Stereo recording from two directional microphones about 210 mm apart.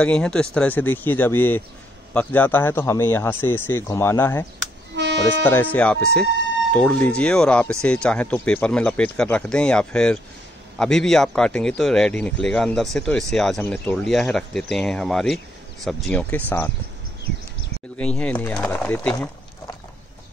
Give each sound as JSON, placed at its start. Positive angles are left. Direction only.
{"t": 0.0, "sound": "speech", "side_deg": 5}
{"t": 4.9, "sound": "music", "side_deg": -55}
{"t": 5.5, "sound": "speech", "side_deg": 10}
{"t": 17.9, "sound": "speech", "side_deg": 5}